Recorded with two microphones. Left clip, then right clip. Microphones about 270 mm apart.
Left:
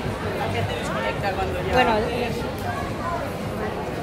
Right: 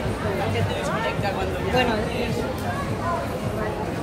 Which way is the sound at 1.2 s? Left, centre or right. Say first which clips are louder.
Left 1 dB; centre.